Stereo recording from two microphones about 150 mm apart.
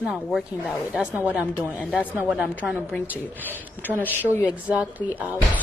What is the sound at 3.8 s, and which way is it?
Speech, 10° right (ahead or behind).